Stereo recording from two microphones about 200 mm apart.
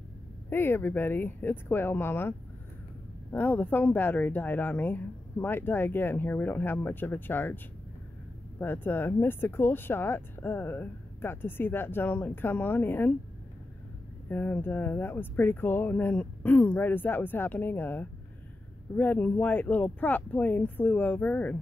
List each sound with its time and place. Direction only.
0.5 s speech: 10° left (ahead or behind)
3.3 s speech: 10° left (ahead or behind)
14.3 s speech: 10° left (ahead or behind)